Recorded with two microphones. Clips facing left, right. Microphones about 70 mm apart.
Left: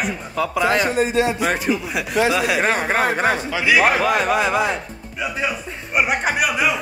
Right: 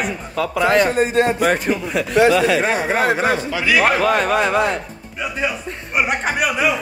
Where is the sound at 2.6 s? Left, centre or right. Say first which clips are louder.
Right 1 dB; left.